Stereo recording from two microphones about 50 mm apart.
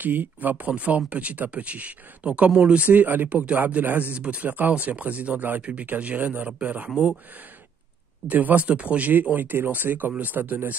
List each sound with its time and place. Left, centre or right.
0.0 s speech: right
2.9 s speech: right
5.6 s speech: right
8.3 s speech: right